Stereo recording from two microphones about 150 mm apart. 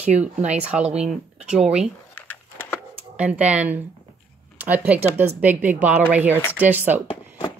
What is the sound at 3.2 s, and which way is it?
Speech, 10° right (ahead or behind).